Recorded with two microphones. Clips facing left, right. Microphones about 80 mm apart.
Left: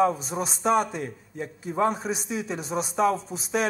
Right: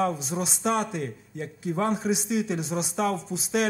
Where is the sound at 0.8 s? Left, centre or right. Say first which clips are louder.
Right 1 dB; centre.